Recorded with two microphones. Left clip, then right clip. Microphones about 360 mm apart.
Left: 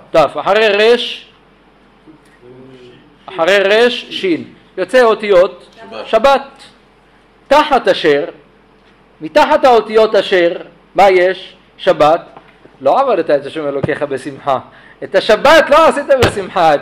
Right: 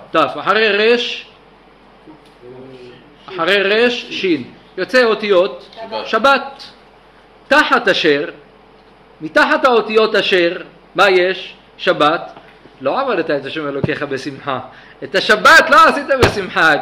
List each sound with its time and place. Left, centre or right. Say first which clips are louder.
0.1 s a man's voice: left 4 dB; centre
3.3 s a man's voice: left 4 dB; centre